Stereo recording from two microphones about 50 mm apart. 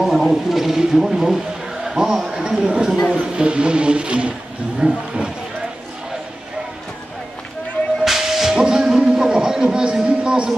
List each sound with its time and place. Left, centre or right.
0.0 s a man's voice: centre
3.1 s music: right
4.7 s a man's voice: centre
8.0 s whip: centre